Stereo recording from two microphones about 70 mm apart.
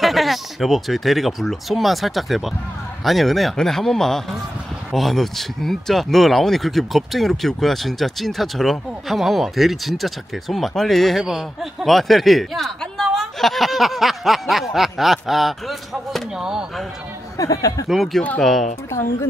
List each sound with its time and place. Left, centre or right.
0.0 s speech: centre
17.4 s speech: left
17.8 s speech: centre
18.9 s speech: left